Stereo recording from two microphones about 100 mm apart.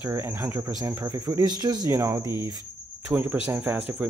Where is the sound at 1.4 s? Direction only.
45° right (ahead or behind).